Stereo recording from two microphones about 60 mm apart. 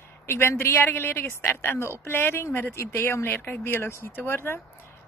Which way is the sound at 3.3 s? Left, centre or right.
Left.